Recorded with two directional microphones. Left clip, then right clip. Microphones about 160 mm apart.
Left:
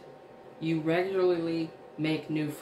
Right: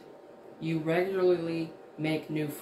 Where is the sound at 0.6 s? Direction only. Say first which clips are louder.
Left 1 dB; 10° left (ahead or behind).